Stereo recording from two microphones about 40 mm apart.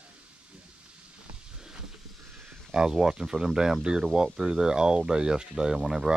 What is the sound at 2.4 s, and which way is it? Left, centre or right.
Speech, centre.